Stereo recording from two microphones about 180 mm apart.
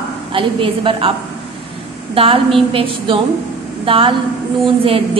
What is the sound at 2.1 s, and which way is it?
A woman's voice, 30° right (ahead or behind).